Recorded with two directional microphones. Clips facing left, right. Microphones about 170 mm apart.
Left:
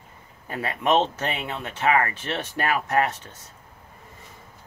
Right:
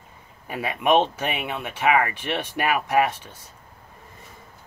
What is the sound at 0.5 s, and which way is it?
Speech, 10° right (ahead or behind).